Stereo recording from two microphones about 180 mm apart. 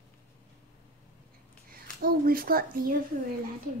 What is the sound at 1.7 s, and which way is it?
Speech, 55° right (ahead or behind).